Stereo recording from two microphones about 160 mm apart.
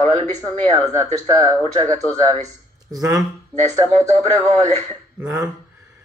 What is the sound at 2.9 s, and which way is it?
Speech, 20° right (ahead or behind).